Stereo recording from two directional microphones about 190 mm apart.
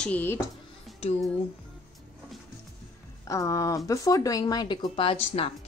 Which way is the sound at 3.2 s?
15° left (ahead or behind).